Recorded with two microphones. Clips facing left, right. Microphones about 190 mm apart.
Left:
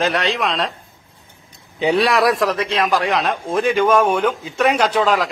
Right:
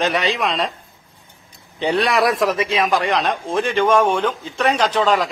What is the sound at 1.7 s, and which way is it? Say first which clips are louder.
A man's voice: left 2 dB; centre (ahead or behind).